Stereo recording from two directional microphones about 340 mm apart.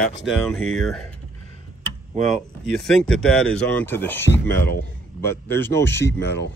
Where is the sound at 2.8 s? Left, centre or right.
Centre.